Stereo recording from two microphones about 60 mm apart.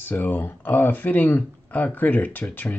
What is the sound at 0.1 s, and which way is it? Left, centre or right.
Speech, left.